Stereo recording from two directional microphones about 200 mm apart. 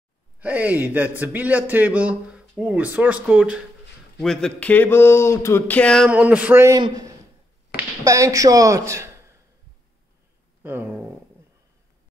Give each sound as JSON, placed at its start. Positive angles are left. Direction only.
{"t": 0.4, "sound": "a man's voice", "side_deg": -10}
{"t": 6.0, "sound": "a man's voice", "side_deg": -5}
{"t": 10.6, "sound": "speech", "side_deg": -10}